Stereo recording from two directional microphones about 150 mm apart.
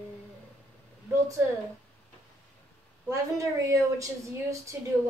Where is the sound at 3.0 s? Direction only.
20° right (ahead or behind).